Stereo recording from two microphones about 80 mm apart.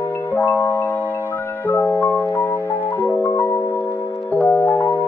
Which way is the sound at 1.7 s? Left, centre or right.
Left.